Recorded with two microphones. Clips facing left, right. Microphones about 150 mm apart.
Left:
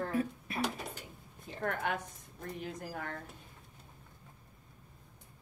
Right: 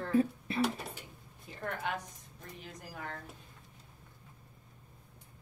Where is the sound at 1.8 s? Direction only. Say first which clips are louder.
Even; 50° left (ahead or behind).